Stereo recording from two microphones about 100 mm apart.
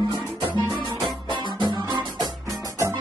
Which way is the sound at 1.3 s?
45° right (ahead or behind).